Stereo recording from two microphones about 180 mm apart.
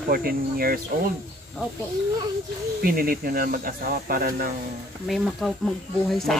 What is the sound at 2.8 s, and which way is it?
Speech, 55° right (ahead or behind).